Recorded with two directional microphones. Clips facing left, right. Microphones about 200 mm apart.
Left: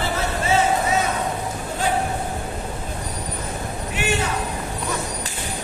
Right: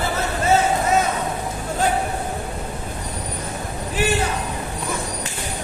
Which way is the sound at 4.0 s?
35° right (ahead or behind).